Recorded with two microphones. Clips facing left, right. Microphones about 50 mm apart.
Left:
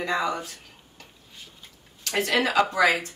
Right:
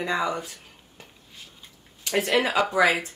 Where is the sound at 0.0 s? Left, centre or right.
Centre.